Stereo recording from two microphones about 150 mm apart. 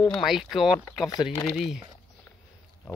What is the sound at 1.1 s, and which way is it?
Speech, 25° left (ahead or behind).